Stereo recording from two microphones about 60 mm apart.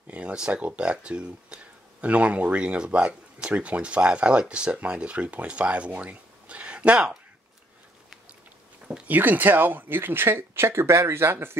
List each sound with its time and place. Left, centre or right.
0.1 s speech: centre
8.8 s speech: right